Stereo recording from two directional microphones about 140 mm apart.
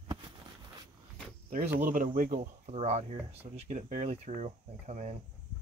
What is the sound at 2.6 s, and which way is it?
Speech, 50° right (ahead or behind).